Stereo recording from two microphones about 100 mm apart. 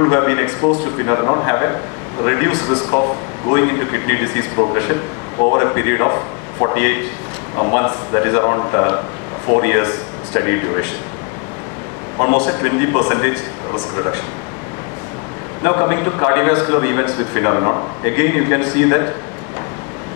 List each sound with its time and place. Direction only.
0.0 s a man's voice: 25° left (ahead or behind)
12.2 s a man's voice: 25° left (ahead or behind)
15.6 s a man's voice: 30° left (ahead or behind)